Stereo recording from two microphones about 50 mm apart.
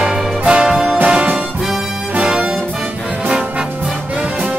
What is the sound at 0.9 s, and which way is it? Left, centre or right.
Music, right.